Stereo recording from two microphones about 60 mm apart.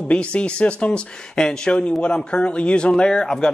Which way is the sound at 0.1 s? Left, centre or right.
Centre.